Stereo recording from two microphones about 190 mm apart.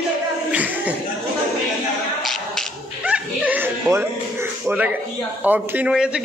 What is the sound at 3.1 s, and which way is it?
Chuckle, 10° right (ahead or behind).